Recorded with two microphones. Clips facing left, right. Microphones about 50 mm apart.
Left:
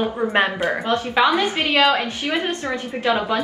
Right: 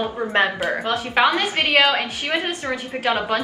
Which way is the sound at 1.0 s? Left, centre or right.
Right.